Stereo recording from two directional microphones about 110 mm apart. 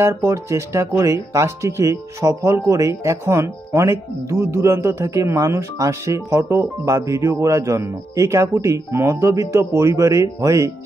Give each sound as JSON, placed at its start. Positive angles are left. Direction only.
{"t": 0.1, "sound": "speech", "side_deg": -25}